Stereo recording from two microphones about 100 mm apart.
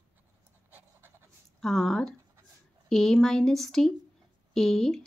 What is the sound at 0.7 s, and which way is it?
Pant, 20° right (ahead or behind).